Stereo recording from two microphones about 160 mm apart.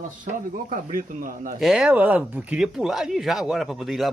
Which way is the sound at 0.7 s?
60° right (ahead or behind).